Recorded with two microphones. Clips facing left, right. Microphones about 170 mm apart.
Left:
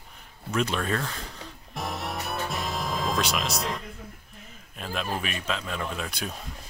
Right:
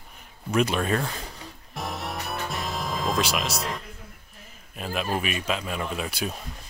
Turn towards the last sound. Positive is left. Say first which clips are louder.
# right 3 dB
turn(degrees=-5)  # may be behind; listen again after turning